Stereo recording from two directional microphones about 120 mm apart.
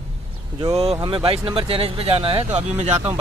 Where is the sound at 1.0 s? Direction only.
50° right (ahead or behind).